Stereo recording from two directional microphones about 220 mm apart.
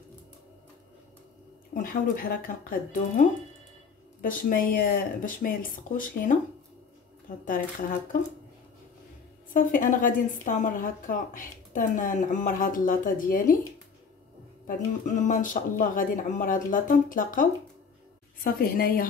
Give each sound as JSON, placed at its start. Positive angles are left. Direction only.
{"t": 1.7, "sound": "a woman's voice", "side_deg": 40}
{"t": 7.4, "sound": "a woman's voice", "side_deg": 40}
{"t": 9.5, "sound": "a woman's voice", "side_deg": 35}
{"t": 14.7, "sound": "a woman's voice", "side_deg": 35}